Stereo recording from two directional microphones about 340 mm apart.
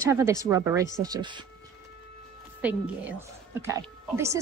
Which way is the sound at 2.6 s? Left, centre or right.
Centre.